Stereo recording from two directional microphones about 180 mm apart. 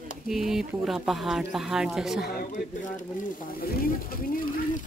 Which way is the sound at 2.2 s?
55° left (ahead or behind).